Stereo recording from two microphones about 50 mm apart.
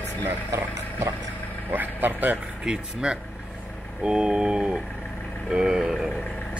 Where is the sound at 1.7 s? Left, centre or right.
Right.